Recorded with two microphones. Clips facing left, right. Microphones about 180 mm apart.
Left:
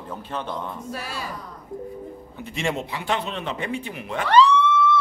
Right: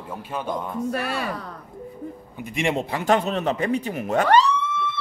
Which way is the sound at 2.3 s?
15° right (ahead or behind).